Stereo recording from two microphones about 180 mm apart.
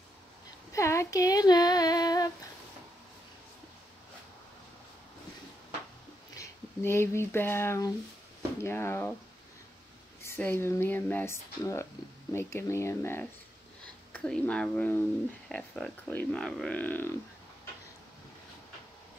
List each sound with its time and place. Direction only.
0.7 s speech: 15° left (ahead or behind)
6.3 s speech: 15° left (ahead or behind)
10.2 s speech: 10° left (ahead or behind)